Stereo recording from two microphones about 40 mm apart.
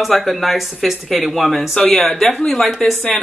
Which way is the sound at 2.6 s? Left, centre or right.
Centre.